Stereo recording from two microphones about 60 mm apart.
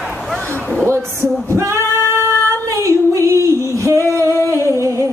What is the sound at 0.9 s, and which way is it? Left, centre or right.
Heart murmur, right.